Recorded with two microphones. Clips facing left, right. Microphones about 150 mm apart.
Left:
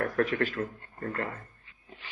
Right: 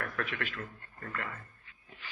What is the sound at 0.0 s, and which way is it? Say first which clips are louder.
Speech: left 10 dB; 40° left (ahead or behind).